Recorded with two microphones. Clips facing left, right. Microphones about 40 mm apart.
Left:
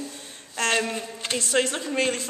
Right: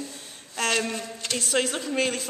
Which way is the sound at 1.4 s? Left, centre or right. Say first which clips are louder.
Left 1 dB; centre.